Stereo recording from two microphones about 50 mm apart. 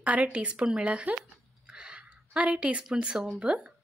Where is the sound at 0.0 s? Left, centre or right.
Right.